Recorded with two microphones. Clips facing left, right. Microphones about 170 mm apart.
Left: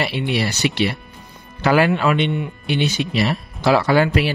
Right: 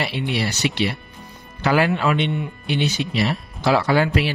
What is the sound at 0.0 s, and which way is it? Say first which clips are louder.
Speech: left 3 dB; 60° left (ahead or behind).